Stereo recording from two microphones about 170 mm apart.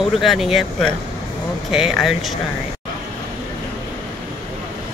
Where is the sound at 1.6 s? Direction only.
Centre (ahead or behind).